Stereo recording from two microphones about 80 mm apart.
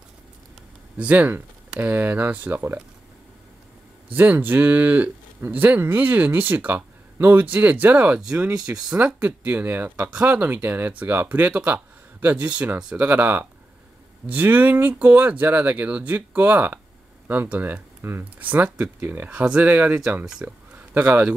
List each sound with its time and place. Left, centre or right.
0.9 s speech: right
4.1 s speech: right
8.5 s speech: centre
8.9 s speech: right
20.2 s speech: centre